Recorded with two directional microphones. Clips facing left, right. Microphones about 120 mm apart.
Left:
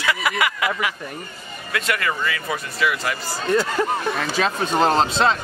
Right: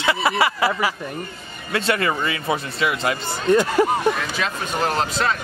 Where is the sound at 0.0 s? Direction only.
30° right (ahead or behind).